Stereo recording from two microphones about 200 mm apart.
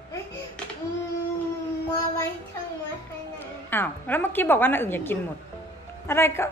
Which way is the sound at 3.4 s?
10° left (ahead or behind).